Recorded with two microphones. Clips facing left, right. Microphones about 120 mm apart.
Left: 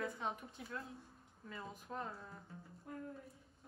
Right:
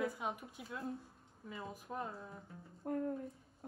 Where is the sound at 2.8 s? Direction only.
45° right (ahead or behind).